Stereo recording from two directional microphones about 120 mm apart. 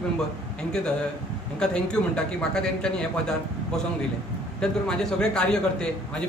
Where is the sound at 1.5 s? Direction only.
5° left (ahead or behind).